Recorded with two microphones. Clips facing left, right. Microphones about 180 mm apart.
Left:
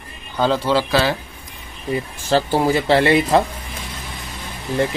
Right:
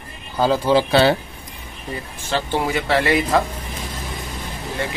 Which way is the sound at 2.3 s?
35° left (ahead or behind).